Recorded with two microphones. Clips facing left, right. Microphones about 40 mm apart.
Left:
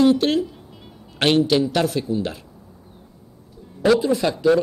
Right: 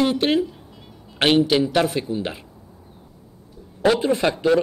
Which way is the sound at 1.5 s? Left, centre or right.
Centre.